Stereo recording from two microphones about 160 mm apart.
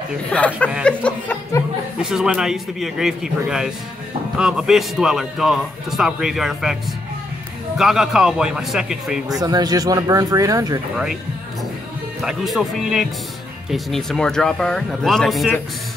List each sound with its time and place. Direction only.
0.3 s a sound: 10° left (ahead or behind)
2.0 s speech: 5° right (ahead or behind)
9.3 s speech: 25° right (ahead or behind)
12.2 s speech: centre (ahead or behind)